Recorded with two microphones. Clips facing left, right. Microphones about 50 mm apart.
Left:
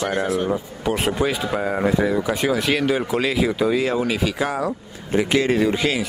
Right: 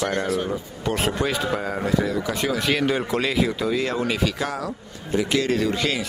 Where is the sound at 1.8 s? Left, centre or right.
Centre.